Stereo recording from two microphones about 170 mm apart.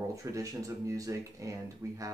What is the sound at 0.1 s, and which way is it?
Speech, 20° right (ahead or behind).